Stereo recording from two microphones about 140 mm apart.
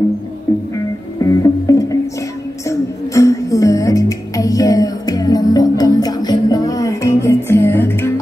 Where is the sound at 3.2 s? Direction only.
25° left (ahead or behind).